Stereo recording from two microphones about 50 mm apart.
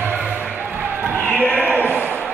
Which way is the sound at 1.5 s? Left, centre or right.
Right.